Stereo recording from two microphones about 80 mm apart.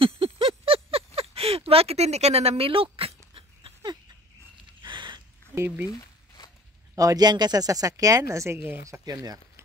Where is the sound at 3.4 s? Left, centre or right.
Right.